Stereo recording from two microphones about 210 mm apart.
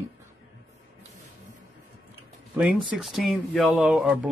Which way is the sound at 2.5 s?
Centre (ahead or behind).